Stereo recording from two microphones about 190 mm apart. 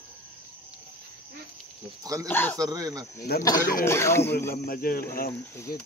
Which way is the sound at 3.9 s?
15° left (ahead or behind).